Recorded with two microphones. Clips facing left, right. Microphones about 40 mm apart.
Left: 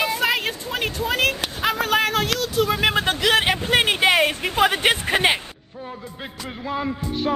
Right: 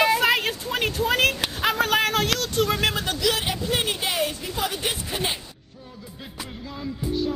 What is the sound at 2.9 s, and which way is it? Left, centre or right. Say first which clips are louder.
Speech: left 5 dB; left.